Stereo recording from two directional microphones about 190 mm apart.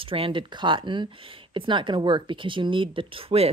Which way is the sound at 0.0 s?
30° right (ahead or behind).